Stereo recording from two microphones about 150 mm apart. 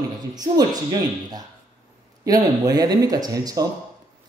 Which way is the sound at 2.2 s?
25° right (ahead or behind).